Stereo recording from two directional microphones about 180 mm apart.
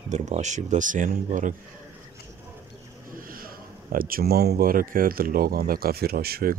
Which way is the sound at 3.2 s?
55° right (ahead or behind).